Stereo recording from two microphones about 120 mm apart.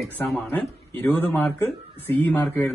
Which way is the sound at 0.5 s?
15° left (ahead or behind).